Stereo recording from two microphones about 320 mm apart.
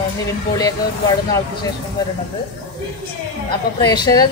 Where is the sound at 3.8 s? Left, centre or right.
Centre.